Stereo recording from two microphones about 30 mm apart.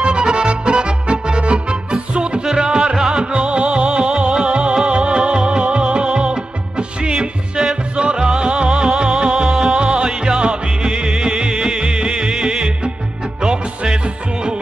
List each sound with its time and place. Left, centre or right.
0.0 s music: right
2.4 s music: centre
3.2 s music: right
3.7 s music: right
4.4 s music: right
8.6 s music: centre
9.3 s music: right